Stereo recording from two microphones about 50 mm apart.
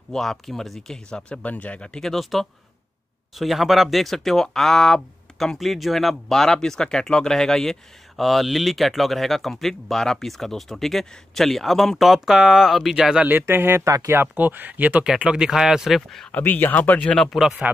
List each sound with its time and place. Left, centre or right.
0.1 s speech: centre
1.4 s speech: left
2.0 s speech: centre
5.6 s speech: centre
13.2 s speech: right
13.5 s speech: right
14.2 s speech: right
15.0 s speech: centre
16.3 s speech: left
17.1 s speech: centre